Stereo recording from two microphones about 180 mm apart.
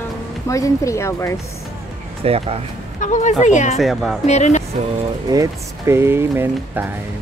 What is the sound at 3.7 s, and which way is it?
Speech, centre (ahead or behind).